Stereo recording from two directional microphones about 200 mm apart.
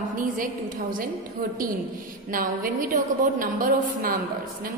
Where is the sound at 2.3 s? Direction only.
45° right (ahead or behind).